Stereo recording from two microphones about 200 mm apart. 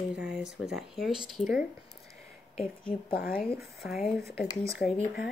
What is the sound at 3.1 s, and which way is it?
Speech, 45° left (ahead or behind).